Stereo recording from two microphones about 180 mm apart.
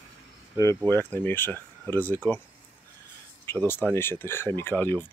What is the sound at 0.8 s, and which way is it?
Speech, 10° left (ahead or behind).